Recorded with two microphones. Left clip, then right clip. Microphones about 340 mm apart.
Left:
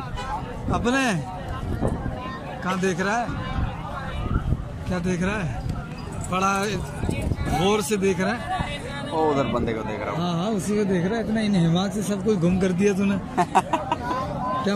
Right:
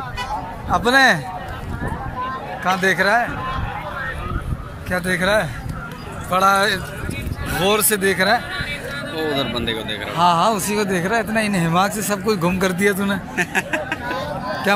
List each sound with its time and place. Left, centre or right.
0.7 s a man's voice: centre
2.6 s a man's voice: centre
4.9 s a man's voice: centre
9.1 s speech: left
10.1 s a man's voice: centre
13.4 s speech: left